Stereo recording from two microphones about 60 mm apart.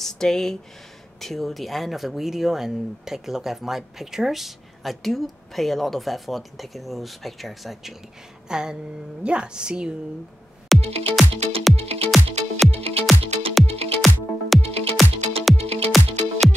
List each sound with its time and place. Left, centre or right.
0.0 s a woman's voice: centre
10.7 s music: centre